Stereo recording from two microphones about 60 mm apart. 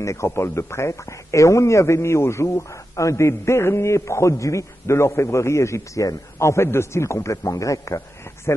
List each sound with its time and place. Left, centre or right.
0.0 s a man's voice: left